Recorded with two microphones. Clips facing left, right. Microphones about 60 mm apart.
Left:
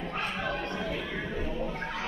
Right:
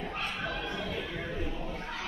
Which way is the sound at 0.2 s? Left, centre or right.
Left.